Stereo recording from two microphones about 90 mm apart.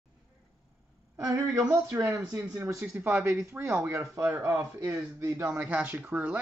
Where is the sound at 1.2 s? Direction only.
40° right (ahead or behind).